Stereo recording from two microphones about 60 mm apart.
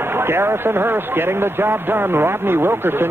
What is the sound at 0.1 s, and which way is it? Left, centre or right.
Speech, right.